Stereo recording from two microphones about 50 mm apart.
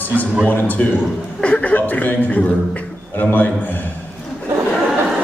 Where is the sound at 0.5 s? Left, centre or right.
Left.